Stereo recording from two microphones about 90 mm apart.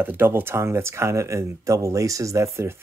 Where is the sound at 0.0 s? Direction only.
20° right (ahead or behind).